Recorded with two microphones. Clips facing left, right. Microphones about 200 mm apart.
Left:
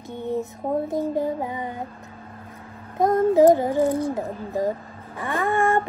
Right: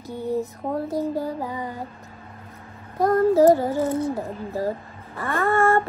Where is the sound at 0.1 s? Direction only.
20° left (ahead or behind).